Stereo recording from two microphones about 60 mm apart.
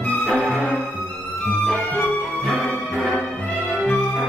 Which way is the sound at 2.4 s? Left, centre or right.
Centre.